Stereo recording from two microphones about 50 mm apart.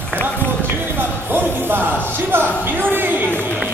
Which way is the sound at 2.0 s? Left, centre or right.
Right.